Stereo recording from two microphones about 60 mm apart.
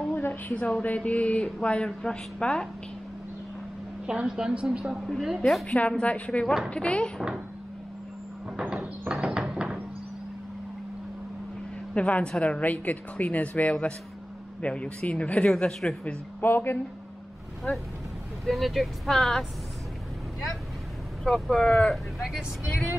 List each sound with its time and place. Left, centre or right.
0.1 s a sound: left
0.6 s speech: left
4.0 s a woman's voice: centre
4.9 s speech: centre
5.7 s a woman's voice: left
8.5 s a sound: centre
9.1 s music: centre
11.9 s a woman's voice: centre
16.3 s a woman's voice: left
18.4 s speech: centre
21.2 s speech: centre
21.9 s speech: centre